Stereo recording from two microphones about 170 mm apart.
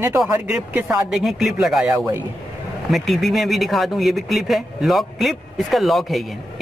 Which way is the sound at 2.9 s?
Centre (ahead or behind).